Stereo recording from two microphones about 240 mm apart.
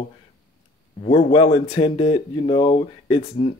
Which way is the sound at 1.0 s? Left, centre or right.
Left.